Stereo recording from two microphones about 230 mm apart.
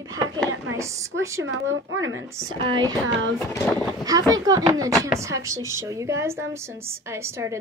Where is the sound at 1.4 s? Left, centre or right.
Right.